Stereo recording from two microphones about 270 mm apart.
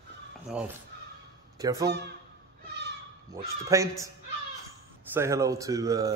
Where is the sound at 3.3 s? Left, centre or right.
Centre.